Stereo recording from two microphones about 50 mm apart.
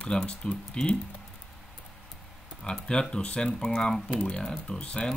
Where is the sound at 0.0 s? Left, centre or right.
Centre.